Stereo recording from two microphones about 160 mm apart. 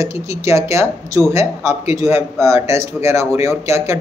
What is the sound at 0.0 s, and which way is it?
A man's voice, 20° right (ahead or behind).